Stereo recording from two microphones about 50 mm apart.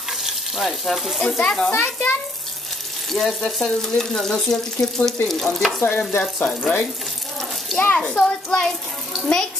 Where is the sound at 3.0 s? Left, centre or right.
Centre.